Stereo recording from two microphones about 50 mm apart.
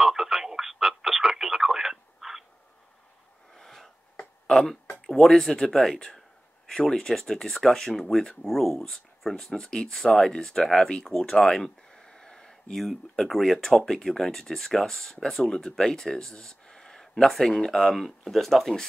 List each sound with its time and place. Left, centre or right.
0.0 s radio: centre
3.5 s a sound: centre
5.0 s speech: centre